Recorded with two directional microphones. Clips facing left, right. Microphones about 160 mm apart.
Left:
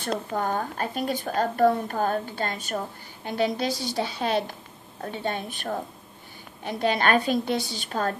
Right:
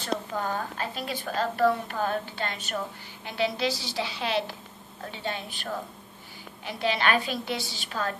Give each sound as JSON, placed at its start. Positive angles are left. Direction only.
{"t": 0.0, "sound": "a woman's voice", "side_deg": 50}